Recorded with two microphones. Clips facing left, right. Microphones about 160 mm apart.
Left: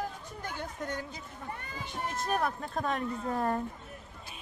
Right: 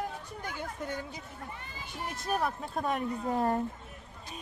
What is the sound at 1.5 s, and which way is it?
Speech, 55° left (ahead or behind).